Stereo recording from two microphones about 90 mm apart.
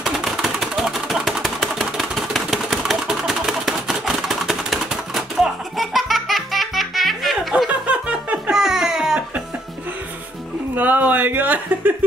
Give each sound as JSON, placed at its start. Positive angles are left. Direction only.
{"t": 0.0, "sound": "engine", "side_deg": 0}
{"t": 7.5, "sound": "laughter", "side_deg": -15}
{"t": 10.8, "sound": "a sound", "side_deg": -20}